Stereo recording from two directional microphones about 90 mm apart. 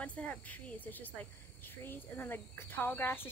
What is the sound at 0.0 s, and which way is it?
Speech, 15° left (ahead or behind).